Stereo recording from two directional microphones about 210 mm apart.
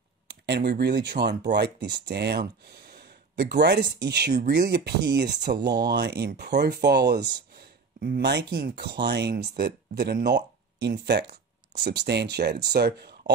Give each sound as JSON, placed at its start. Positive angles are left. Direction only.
{"t": 0.3, "sound": "speech", "side_deg": -50}